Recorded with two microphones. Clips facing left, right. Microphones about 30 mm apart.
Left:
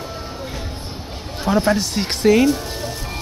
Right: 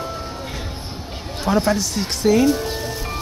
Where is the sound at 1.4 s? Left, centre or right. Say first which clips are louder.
Left 1 dB; centre.